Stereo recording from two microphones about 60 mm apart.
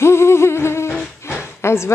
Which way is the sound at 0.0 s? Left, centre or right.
Left.